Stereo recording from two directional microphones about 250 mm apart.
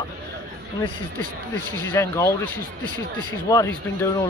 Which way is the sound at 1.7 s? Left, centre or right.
Centre.